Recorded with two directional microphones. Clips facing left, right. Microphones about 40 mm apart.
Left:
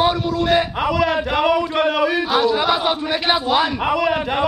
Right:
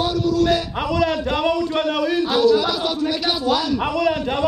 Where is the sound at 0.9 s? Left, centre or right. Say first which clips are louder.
Left 1 dB; centre; by 3.4 s left.